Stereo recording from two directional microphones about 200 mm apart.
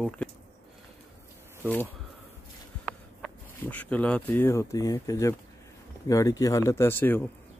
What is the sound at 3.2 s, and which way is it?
Speech, 5° left (ahead or behind).